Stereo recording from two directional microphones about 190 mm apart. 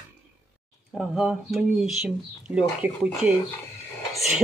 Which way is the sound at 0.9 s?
Centre (ahead or behind).